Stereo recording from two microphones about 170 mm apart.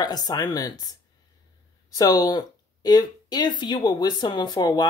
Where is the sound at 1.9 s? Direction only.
20° left (ahead or behind).